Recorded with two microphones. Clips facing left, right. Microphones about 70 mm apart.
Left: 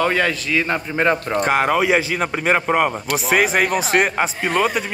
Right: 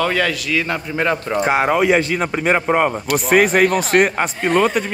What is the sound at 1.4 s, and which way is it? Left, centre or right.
Speech, centre.